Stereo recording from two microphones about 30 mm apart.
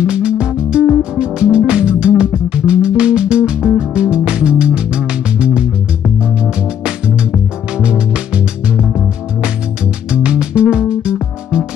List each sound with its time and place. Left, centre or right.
0.0 s music: right
7.8 s music: right
10.1 s music: right